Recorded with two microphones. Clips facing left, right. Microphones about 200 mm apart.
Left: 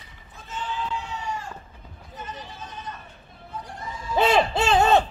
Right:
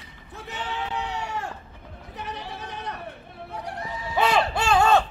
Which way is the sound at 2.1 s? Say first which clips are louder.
Right 3 dB; 65° right (ahead or behind).